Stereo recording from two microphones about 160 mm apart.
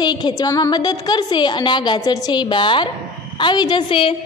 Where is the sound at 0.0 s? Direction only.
25° left (ahead or behind).